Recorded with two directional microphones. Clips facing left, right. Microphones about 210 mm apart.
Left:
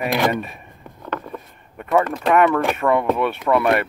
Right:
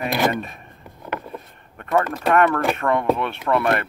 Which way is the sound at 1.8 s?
Centre (ahead or behind).